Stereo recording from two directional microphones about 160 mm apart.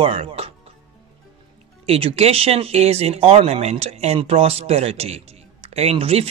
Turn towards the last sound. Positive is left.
turn(degrees=-40)  # may be behind; listen again after turning